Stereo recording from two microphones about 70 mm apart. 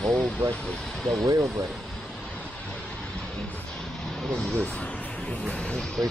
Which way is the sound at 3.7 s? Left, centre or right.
Centre.